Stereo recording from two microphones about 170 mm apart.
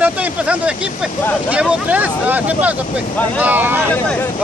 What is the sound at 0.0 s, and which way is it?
Speech, 10° right (ahead or behind).